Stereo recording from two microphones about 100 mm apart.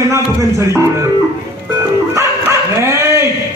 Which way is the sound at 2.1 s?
30° right (ahead or behind).